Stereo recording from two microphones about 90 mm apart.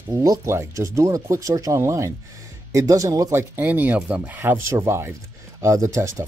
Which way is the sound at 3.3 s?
25° right (ahead or behind).